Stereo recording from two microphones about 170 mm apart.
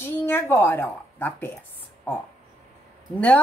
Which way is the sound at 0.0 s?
15° left (ahead or behind).